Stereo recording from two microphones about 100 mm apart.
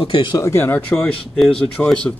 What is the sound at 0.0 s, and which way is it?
Speech, 60° left (ahead or behind).